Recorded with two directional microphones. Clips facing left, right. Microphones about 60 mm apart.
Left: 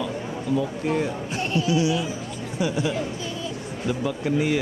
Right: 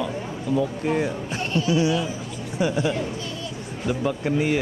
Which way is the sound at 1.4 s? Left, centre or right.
Centre.